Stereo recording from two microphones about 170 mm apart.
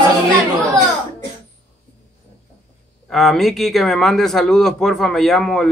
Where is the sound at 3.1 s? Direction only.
Centre (ahead or behind).